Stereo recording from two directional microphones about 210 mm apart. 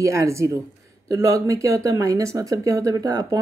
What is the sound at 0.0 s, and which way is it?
Speech, 15° right (ahead or behind).